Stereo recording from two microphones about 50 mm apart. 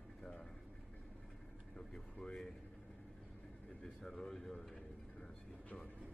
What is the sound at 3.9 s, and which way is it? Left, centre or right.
Speech, centre.